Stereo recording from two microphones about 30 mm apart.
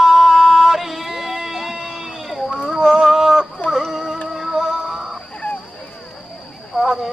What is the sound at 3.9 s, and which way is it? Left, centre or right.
Music, centre.